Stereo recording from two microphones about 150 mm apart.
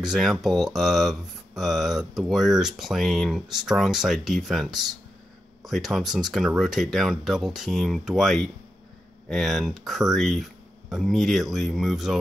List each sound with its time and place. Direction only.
0.0 s speech: centre (ahead or behind)